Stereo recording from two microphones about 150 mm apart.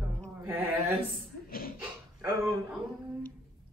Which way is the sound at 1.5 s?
75° left (ahead or behind).